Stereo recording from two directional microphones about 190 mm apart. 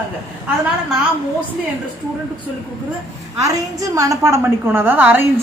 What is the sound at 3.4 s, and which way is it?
A woman's voice, 20° right (ahead or behind).